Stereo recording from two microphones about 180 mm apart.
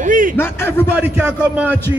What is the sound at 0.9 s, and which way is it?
Speech, 10° right (ahead or behind).